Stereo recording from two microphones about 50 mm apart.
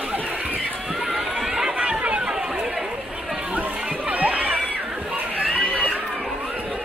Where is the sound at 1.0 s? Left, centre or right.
Centre.